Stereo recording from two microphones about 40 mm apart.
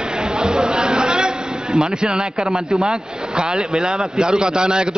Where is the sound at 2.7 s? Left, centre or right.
Centre.